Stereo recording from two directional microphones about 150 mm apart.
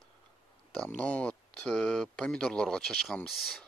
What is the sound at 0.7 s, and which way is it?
Speech, 5° left (ahead or behind).